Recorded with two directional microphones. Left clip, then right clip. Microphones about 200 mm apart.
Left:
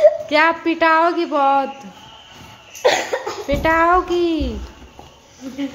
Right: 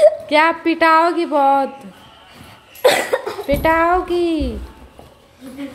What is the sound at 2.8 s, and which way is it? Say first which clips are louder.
Cough: right 2 dB; 60° right (ahead or behind).